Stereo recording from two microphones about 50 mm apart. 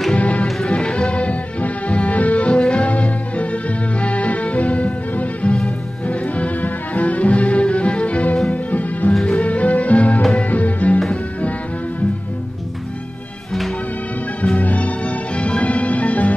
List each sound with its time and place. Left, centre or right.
0.2 s music: left
14.4 s music: left